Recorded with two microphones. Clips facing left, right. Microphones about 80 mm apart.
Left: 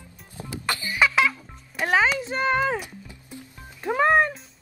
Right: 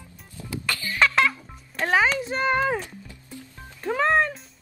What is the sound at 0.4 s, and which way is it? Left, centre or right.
Music, left.